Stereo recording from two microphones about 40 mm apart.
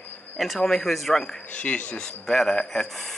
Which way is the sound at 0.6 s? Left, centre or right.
Centre.